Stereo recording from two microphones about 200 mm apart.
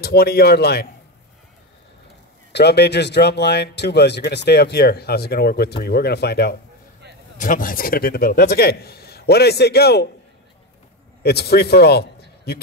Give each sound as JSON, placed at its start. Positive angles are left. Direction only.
{"t": 0.0, "sound": "a man's voice", "side_deg": 50}
{"t": 2.5, "sound": "speech", "side_deg": 55}
{"t": 7.3, "sound": "a man's voice", "side_deg": 40}
{"t": 11.2, "sound": "a man's voice", "side_deg": 55}